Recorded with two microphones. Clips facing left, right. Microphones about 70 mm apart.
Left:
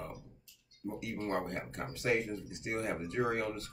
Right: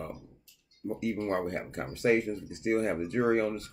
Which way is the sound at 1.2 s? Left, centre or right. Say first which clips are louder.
Right 5 dB; right.